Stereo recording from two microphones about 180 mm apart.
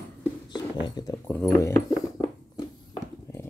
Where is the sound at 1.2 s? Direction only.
10° left (ahead or behind).